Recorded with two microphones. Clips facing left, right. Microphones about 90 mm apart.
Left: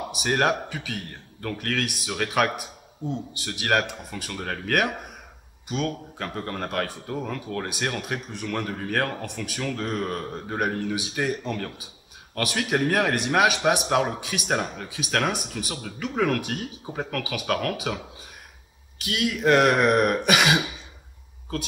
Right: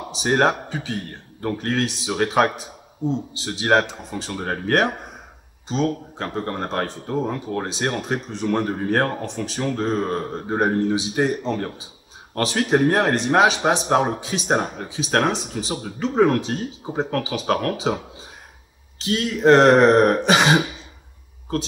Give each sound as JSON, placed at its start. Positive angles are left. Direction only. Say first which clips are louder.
{"t": 0.1, "sound": "speech", "louder": "right 5 dB", "side_deg": -30}